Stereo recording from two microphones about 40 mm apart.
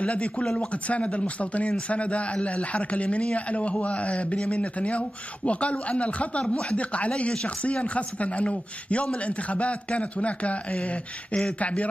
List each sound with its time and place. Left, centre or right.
0.0 s a man's voice: left